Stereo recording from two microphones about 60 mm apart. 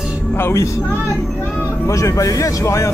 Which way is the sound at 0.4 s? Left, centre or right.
Left.